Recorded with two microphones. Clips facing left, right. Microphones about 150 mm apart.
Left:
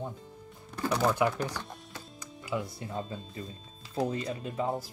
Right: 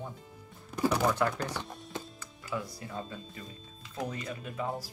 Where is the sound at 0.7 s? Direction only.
10° right (ahead or behind).